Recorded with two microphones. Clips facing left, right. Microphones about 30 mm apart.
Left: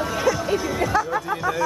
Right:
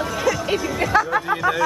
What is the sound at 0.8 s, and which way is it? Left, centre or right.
Speech, right.